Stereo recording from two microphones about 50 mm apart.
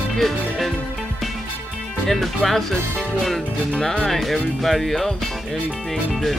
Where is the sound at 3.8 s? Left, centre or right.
Centre.